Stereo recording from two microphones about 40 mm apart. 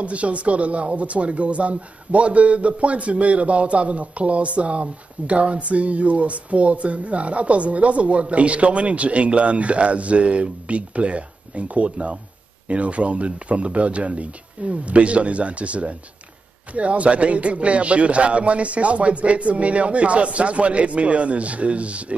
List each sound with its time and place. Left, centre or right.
0.0 s speech: right